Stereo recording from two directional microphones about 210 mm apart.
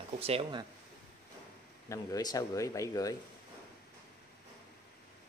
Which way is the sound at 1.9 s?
15° left (ahead or behind).